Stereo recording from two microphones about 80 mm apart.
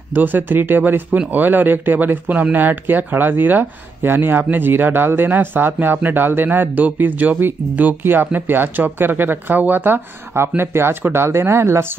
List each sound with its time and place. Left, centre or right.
0.1 s speech: right